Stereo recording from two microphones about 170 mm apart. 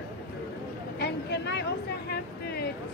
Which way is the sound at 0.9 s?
80° left.